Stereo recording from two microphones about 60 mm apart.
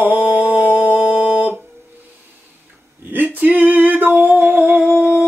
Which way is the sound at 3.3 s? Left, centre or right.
Right.